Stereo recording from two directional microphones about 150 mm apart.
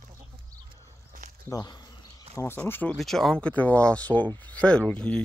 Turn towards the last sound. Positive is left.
turn(degrees=5)  # may be behind; listen again after turning